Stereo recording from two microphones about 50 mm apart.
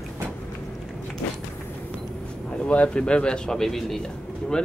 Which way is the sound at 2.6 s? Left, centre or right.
Left.